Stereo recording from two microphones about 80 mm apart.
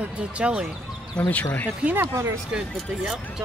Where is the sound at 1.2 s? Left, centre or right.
Centre.